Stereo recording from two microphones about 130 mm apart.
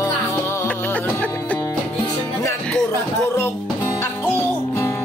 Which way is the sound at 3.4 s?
20° left (ahead or behind).